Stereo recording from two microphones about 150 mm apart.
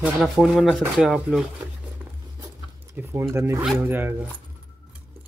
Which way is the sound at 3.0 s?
10° right (ahead or behind).